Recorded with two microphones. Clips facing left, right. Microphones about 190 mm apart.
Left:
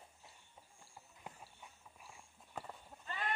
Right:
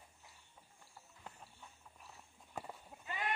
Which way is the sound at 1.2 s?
10° left (ahead or behind).